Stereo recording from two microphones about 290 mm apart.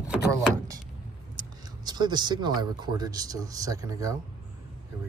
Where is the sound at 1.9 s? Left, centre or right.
Centre.